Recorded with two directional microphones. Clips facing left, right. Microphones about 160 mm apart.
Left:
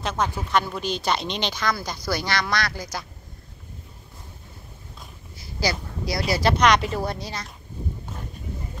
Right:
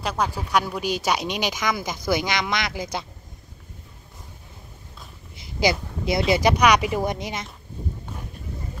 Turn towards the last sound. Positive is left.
turn(degrees=-20)  # may be behind; listen again after turning